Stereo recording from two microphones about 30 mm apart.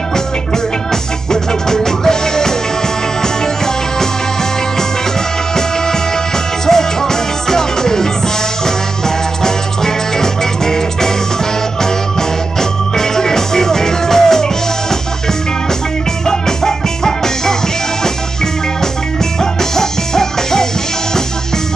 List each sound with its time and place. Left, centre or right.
1.3 s music: centre
6.6 s music: centre
16.3 s music: centre
19.7 s music: centre